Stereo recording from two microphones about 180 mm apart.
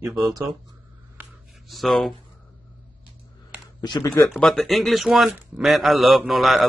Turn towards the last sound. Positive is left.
turn(degrees=0)  # may be behind; listen again after turning